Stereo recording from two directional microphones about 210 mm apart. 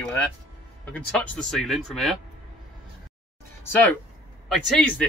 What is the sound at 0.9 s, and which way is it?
Speech, 5° left (ahead or behind).